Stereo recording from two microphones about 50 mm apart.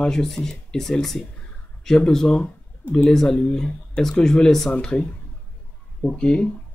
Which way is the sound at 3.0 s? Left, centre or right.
Centre.